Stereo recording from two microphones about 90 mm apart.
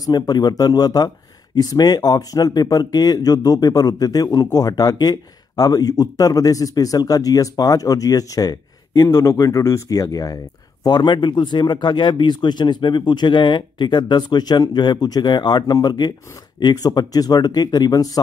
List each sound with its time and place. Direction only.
0.0 s speech: 45° left (ahead or behind)